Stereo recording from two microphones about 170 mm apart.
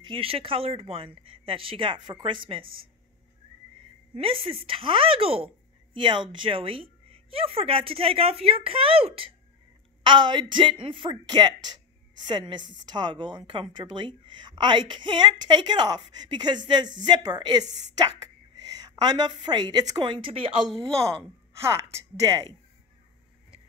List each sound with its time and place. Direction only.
0.0 s a woman's voice: 30° right (ahead or behind)
4.1 s a woman's voice: 30° right (ahead or behind)
21.5 s a woman's voice: 15° right (ahead or behind)